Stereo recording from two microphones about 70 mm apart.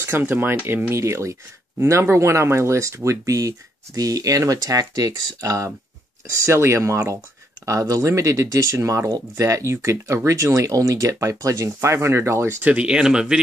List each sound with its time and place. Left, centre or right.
0.0 s speech: right
12.6 s speech: centre